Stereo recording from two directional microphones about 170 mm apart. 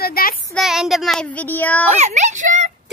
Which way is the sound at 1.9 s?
40° right (ahead or behind).